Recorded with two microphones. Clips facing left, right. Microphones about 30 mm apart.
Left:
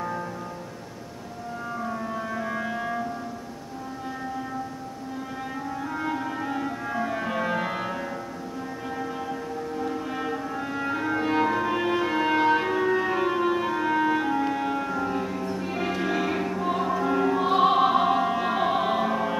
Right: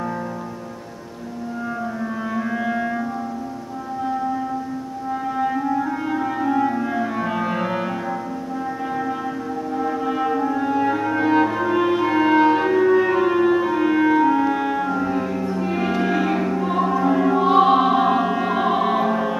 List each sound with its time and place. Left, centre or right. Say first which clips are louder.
2.6 s music: right 6 dB; right
5.4 s clarinet: right 12 dB; right
9.8 s music: right 7 dB; right
10.0 s french horn: right 9 dB; centre
10.6 s music: right 8 dB; centre
11.2 s music: right 6 dB; centre